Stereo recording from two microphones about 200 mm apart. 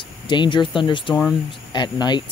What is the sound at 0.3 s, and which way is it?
Speech, 25° left (ahead or behind).